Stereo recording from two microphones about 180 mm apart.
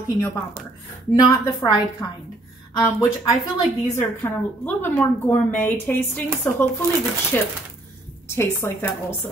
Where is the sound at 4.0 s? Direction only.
10° left (ahead or behind).